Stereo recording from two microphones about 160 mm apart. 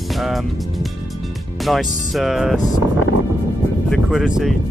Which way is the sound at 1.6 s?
Centre (ahead or behind).